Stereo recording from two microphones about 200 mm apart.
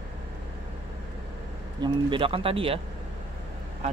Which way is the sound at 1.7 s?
25° right (ahead or behind).